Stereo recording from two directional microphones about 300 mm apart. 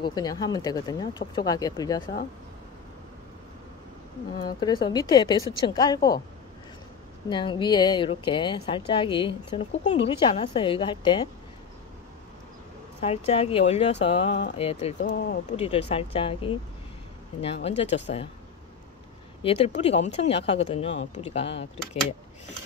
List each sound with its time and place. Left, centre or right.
0.0 s speech: centre
4.4 s speech: centre
7.2 s speech: centre
13.0 s speech: centre
17.6 s speech: left
19.4 s speech: centre